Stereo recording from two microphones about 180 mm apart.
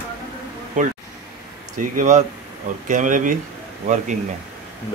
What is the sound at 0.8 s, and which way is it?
Speech, 45° right (ahead or behind).